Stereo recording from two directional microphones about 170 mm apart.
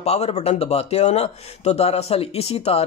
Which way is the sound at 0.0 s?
40° left (ahead or behind).